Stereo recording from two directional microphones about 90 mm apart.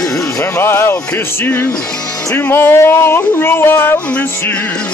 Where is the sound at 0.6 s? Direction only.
25° left (ahead or behind).